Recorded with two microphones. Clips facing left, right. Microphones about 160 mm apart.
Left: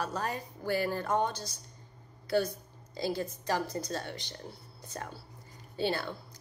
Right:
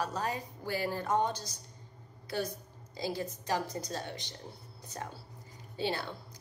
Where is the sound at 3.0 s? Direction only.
15° right (ahead or behind).